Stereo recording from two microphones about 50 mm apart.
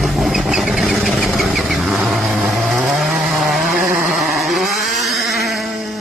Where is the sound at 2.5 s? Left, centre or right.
Centre.